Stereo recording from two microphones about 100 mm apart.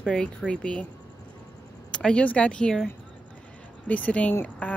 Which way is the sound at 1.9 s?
10° left (ahead or behind).